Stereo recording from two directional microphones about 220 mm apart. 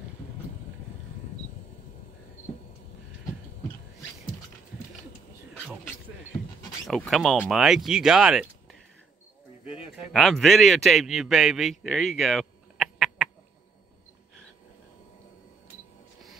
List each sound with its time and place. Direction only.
6.9 s speech: centre (ahead or behind)
9.7 s a man's voice: 5° right (ahead or behind)